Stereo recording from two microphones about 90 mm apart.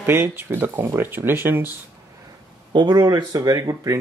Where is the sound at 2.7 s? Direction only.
50° right (ahead or behind).